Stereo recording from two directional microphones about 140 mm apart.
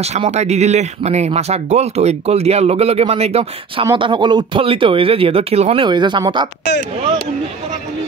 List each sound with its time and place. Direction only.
0.0 s speech: 50° right (ahead or behind)
3.8 s speech: 35° right (ahead or behind)